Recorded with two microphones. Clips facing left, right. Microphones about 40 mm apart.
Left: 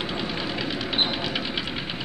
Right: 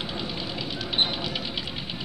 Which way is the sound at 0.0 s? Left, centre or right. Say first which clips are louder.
Left 4 dB; centre.